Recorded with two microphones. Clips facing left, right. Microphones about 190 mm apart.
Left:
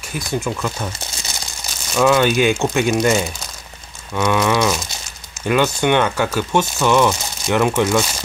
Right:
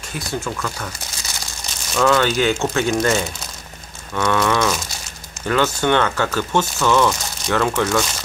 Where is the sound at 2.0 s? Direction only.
15° left (ahead or behind).